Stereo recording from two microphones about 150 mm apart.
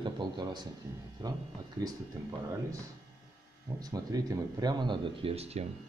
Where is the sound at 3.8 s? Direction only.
25° right (ahead or behind).